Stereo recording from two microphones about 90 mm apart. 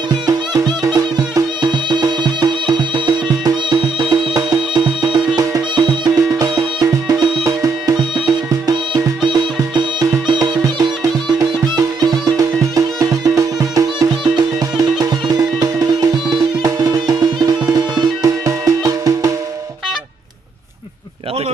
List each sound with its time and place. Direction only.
0.9 s music: 50° right (ahead or behind)
6.1 s music: 40° right (ahead or behind)
9.2 s music: 65° right (ahead or behind)
10.6 s music: 50° right (ahead or behind)